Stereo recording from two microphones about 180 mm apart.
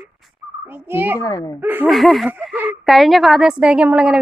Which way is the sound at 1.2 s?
20° left (ahead or behind).